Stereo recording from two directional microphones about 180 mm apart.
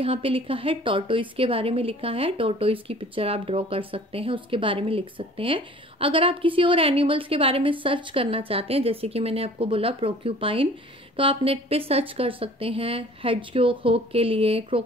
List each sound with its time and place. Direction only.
0.0 s a woman's voice: 30° right (ahead or behind)